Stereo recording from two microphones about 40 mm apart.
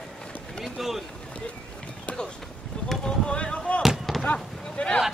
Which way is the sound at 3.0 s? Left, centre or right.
Left.